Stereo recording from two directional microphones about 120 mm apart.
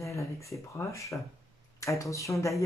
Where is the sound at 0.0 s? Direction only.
25° left (ahead or behind).